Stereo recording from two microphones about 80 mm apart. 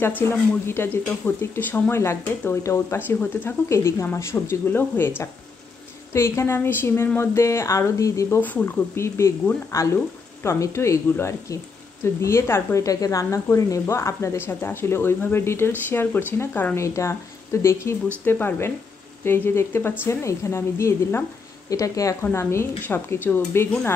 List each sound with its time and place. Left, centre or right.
0.2 s speech: left
8.4 s speech: left
12.8 s speech: left
16.7 s speech: left
21.6 s speech: left
22.2 s speech: left